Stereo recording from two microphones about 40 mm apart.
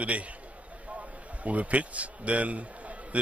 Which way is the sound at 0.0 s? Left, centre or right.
Right.